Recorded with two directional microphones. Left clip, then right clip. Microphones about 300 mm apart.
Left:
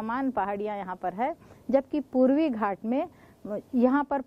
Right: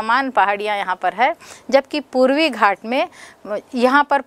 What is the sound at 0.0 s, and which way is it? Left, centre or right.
A woman's voice, centre.